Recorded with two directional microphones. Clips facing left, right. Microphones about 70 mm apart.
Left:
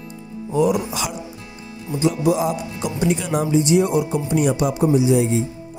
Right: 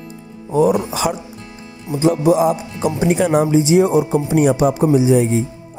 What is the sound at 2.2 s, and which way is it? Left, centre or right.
Speech, right.